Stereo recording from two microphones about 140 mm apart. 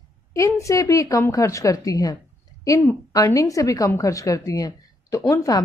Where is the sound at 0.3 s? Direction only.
20° left (ahead or behind).